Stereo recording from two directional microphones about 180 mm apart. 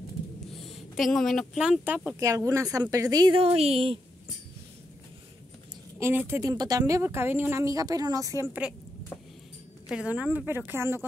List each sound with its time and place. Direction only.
0.7 s speech: centre (ahead or behind); by 4.0 s 30° right (ahead or behind)
5.9 s speech: 15° right (ahead or behind)
9.8 s speech: 5° right (ahead or behind)